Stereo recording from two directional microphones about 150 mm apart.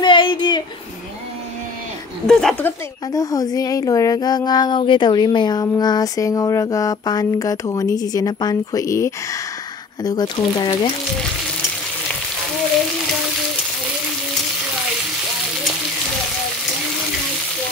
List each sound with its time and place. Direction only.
0.0 s a sound: 30° left (ahead or behind)
2.2 s speech: 5° left (ahead or behind)
3.1 s speech: 25° left (ahead or behind)